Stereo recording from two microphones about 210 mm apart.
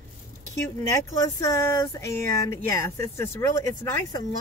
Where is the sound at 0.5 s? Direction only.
15° left (ahead or behind).